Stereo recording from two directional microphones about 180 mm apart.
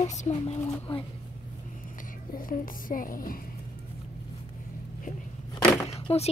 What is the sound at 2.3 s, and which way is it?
Speech, 50° left (ahead or behind).